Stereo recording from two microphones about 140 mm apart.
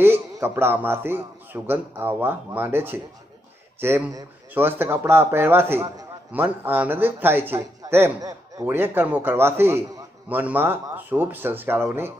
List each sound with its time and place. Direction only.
0.0 s speech: 15° right (ahead or behind)